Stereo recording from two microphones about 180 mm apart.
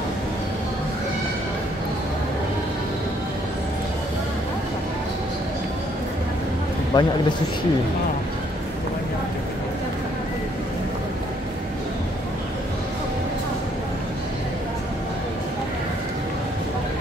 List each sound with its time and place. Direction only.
6.9 s a man's voice: 25° left (ahead or behind)